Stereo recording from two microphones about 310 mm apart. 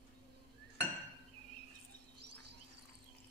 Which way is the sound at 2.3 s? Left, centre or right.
Right.